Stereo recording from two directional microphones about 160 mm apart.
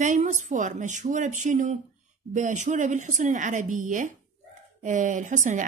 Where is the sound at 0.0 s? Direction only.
50° right (ahead or behind).